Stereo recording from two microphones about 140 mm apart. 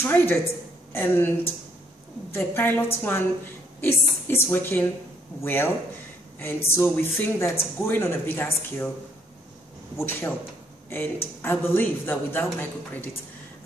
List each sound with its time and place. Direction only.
0.0 s speech: 15° left (ahead or behind)
9.9 s speech: 15° left (ahead or behind)